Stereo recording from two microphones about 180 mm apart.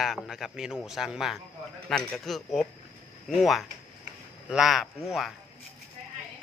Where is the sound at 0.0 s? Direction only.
Centre (ahead or behind).